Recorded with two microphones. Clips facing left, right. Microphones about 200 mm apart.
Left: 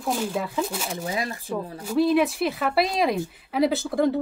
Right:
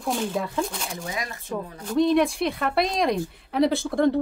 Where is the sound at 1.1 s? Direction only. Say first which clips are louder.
Left 5 dB; 30° left (ahead or behind).